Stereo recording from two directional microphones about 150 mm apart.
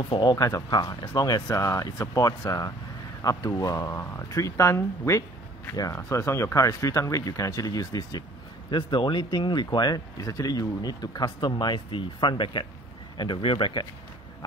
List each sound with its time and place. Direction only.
0.1 s speech: 30° left (ahead or behind)